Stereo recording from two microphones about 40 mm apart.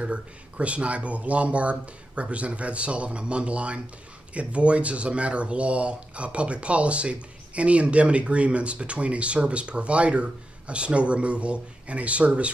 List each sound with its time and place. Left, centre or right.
0.0 s speech: right